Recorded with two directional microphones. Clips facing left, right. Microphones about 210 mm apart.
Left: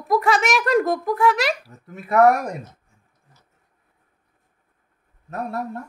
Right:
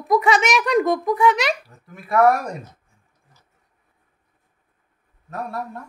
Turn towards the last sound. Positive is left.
turn(degrees=20)  # may be behind; listen again after turning